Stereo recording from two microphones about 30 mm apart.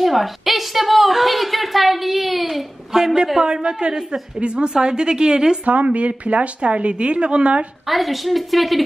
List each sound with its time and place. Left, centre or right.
0.0 s a woman's voice: centre
2.9 s a woman's voice: centre
4.4 s speech: right
5.9 s a woman's voice: right
7.8 s a woman's voice: centre